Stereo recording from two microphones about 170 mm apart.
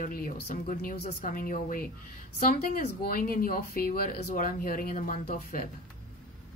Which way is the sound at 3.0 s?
55° left (ahead or behind).